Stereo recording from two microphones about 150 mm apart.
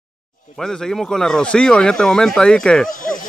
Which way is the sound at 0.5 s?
5° left (ahead or behind).